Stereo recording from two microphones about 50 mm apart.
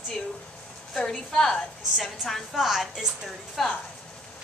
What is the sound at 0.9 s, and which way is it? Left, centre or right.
A woman's voice, centre.